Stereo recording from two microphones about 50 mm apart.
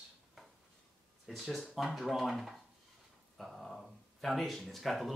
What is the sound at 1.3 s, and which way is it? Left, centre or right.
Speech, centre.